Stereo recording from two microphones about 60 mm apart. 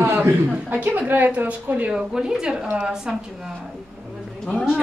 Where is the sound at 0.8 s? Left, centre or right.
Right.